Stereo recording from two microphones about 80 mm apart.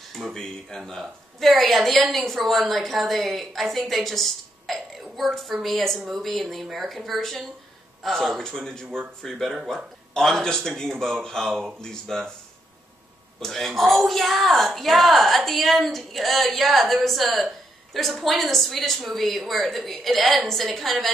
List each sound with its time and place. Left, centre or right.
0.1 s a woman's voice: centre
8.8 s speech: right
9.2 s a woman's voice: centre
13.4 s a woman's voice: centre